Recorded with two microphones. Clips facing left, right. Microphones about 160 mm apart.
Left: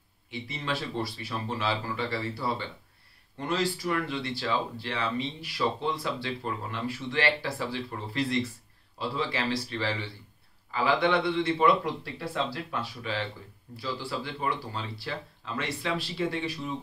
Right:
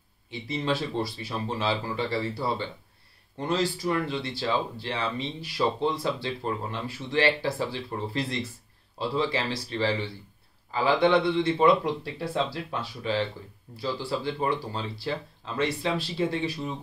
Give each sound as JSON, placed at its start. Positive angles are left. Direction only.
{"t": 0.3, "sound": "speech", "side_deg": -30}